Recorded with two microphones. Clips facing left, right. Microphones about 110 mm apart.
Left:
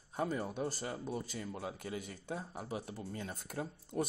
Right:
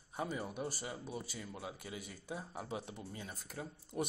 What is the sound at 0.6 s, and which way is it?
Speech, 10° right (ahead or behind).